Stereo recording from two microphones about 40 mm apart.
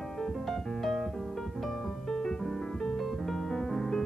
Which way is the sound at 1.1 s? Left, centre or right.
Centre.